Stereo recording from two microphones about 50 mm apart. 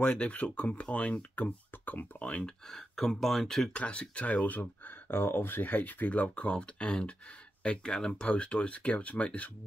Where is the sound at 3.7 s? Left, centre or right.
Left.